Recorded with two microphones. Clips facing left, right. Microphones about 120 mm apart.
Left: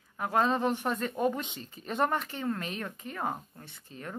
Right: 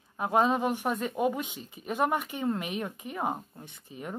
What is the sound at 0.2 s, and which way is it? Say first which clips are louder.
Speech: right 2 dB; 15° right (ahead or behind).